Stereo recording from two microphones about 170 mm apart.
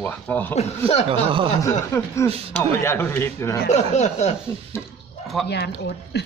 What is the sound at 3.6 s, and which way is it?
Speech, 45° left (ahead or behind).